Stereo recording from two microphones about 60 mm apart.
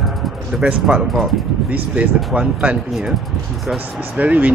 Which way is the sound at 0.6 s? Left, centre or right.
Centre.